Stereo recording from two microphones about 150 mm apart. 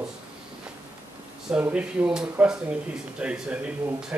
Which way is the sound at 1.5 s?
10° right (ahead or behind).